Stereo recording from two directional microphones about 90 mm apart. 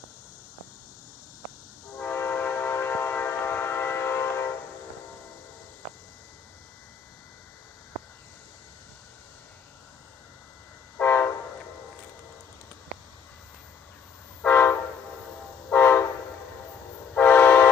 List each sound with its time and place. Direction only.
2.0 s train: 25° left (ahead or behind)
11.0 s train: 25° left (ahead or behind)
14.4 s train: 20° left (ahead or behind)
17.1 s train: 20° left (ahead or behind)